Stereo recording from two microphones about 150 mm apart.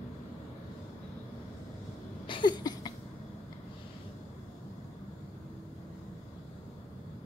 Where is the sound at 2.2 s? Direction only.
30° left (ahead or behind).